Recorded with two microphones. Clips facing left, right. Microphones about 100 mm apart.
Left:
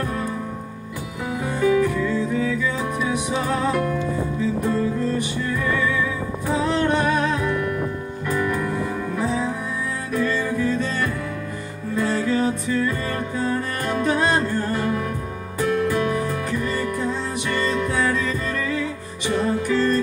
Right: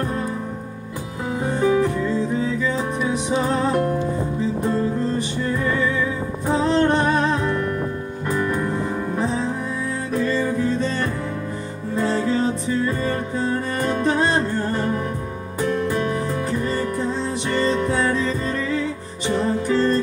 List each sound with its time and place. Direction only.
1.4 s music: 35° right (ahead or behind)
6.4 s music: 35° right (ahead or behind)
10.6 s music: 35° right (ahead or behind)
16.4 s music: 35° right (ahead or behind)